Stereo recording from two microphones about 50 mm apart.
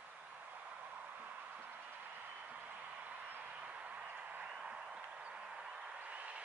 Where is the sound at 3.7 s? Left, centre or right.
Right.